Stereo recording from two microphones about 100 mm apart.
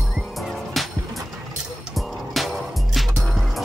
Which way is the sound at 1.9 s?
Centre (ahead or behind).